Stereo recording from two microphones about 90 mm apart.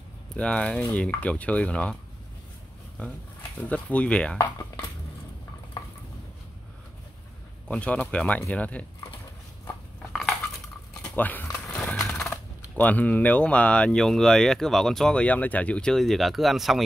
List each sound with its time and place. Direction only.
0.4 s speech: 10° left (ahead or behind)
3.5 s speech: 15° left (ahead or behind)
7.6 s speech: 15° left (ahead or behind)
11.1 s speech: 20° left (ahead or behind)
11.6 s horse: 5° left (ahead or behind)
12.7 s speech: 15° left (ahead or behind); by 16.8 s centre (ahead or behind)